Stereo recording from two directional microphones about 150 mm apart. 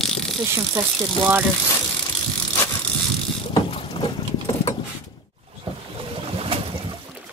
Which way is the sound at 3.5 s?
35° left (ahead or behind).